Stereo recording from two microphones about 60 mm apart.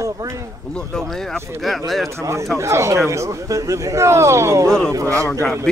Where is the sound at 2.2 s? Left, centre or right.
Right.